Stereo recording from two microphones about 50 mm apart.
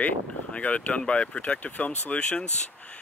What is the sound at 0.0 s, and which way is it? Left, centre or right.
Speech, left.